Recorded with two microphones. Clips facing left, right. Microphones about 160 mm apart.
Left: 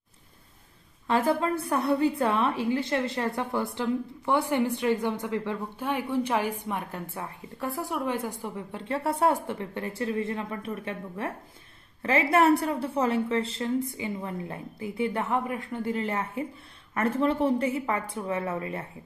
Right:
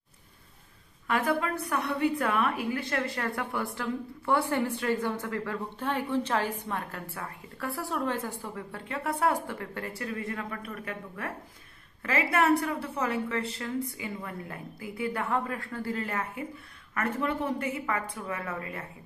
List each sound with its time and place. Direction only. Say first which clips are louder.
1.0 s a woman's voice: left 3 dB; 30° left (ahead or behind)